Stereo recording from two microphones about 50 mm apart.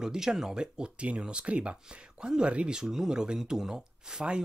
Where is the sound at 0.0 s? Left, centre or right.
Centre.